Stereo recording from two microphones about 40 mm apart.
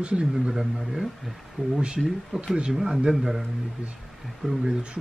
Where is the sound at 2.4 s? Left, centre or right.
Right.